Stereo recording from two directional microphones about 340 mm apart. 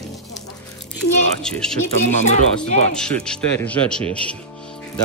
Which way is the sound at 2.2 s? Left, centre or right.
Centre.